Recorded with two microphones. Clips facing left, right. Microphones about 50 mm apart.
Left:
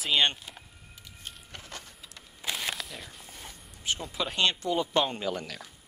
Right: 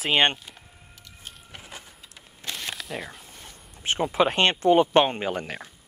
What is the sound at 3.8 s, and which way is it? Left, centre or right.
Speech, right.